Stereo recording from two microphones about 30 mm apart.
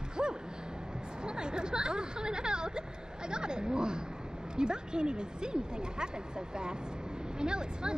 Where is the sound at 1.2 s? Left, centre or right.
Right.